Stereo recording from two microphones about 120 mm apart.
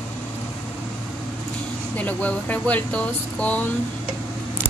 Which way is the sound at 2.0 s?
15° left (ahead or behind).